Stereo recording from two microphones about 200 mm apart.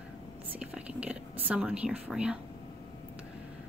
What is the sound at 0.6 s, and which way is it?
Whispering, 5° right (ahead or behind).